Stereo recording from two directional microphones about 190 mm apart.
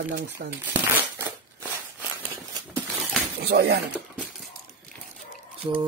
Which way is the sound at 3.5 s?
60° right (ahead or behind).